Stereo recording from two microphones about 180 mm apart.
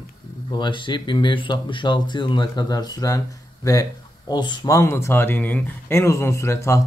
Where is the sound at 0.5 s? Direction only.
25° left (ahead or behind).